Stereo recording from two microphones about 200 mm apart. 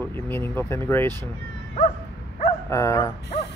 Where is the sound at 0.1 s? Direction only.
10° left (ahead or behind).